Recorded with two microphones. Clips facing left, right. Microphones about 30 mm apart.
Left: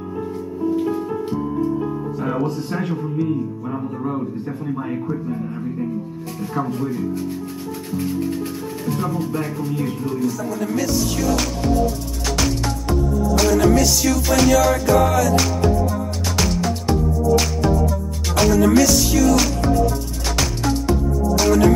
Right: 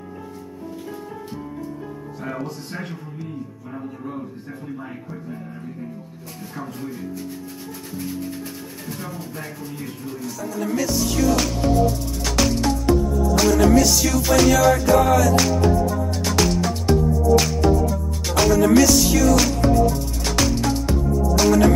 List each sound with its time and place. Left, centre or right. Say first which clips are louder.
1.6 s music: left 11 dB; left
8.3 s music: left 7 dB; left
9.2 s speech: left 9 dB; left
10.2 s music: left 2 dB; centre